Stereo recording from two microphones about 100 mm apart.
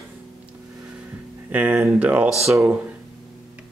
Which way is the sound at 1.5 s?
15° right (ahead or behind).